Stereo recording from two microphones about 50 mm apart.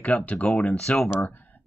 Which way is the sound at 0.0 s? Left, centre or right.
Left.